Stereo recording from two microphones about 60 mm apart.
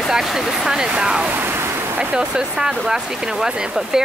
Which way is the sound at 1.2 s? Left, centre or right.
Right.